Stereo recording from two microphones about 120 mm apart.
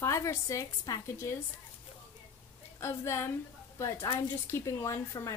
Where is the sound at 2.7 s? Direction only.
20° left (ahead or behind).